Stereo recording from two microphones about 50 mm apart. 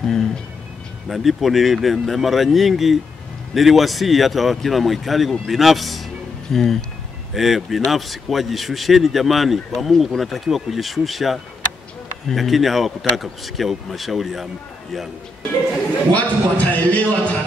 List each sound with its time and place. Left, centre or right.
0.0 s a sound: centre
1.0 s a man's voice: centre
12.4 s a man's voice: centre
16.1 s a man's voice: left